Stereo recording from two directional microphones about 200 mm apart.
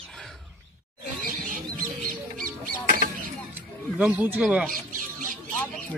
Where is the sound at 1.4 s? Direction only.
40° right (ahead or behind).